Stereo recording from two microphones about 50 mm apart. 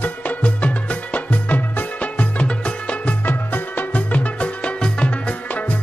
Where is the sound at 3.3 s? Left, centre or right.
Left.